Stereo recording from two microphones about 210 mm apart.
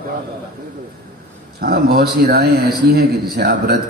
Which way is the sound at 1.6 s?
50° right (ahead or behind).